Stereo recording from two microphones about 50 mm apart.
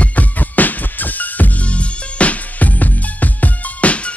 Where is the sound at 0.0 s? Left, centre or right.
Left.